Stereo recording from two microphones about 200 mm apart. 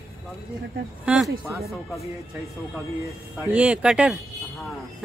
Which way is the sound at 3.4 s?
5° right (ahead or behind).